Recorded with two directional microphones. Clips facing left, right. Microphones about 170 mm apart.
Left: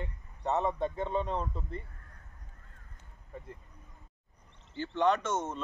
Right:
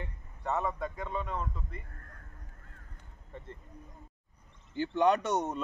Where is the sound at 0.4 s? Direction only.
20° left (ahead or behind).